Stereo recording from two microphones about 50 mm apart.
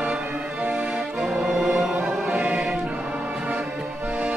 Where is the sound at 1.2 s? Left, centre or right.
Centre.